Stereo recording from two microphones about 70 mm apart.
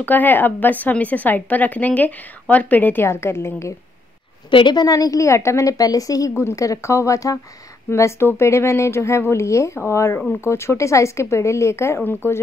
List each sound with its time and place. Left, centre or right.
0.0 s a woman's voice: left
4.6 s a woman's voice: left
6.3 s speech: left
7.9 s speech: left